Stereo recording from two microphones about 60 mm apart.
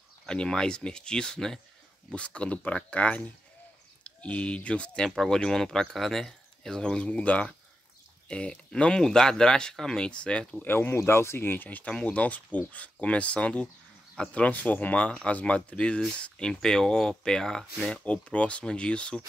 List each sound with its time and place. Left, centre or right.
0.3 s speech: centre
10.6 s speech: left
11.8 s speech: centre